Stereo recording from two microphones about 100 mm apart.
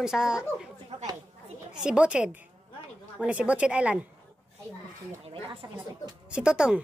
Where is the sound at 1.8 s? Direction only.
10° right (ahead or behind).